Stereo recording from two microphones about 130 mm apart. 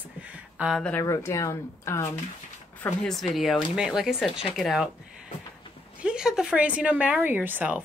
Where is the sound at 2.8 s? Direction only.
5° left (ahead or behind).